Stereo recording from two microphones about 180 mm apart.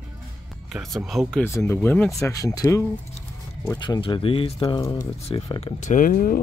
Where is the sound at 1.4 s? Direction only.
15° left (ahead or behind).